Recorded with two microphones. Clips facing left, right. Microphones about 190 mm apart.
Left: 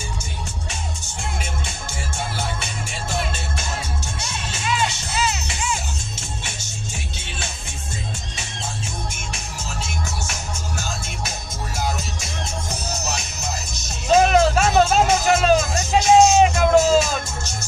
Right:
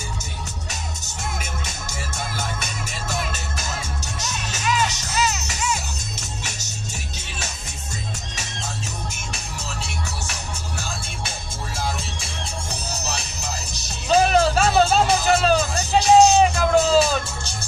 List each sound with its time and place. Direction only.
0.7 s music: 40° right (ahead or behind)
9.8 s music: 35° right (ahead or behind)